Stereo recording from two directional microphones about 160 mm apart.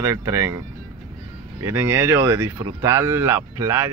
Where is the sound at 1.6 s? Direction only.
15° right (ahead or behind).